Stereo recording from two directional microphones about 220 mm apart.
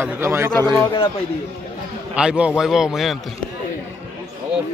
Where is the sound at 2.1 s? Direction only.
5° right (ahead or behind).